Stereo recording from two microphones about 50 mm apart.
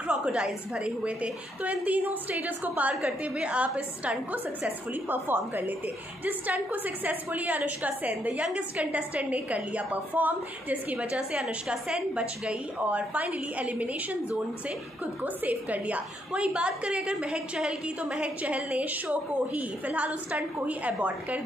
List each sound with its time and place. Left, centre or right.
0.1 s a woman's voice: centre; by 3.0 s right
3.0 s a woman's voice: right
4.6 s a woman's voice: right
11.1 s a woman's voice: centre
12.8 s a woman's voice: right
15.2 s a woman's voice: right
16.3 s a woman's voice: right
18.4 s a woman's voice: right